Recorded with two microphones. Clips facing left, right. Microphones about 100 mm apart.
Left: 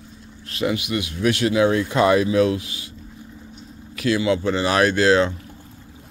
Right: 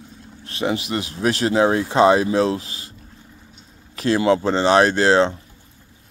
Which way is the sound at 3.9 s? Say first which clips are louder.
Right 1 dB; 35° right (ahead or behind).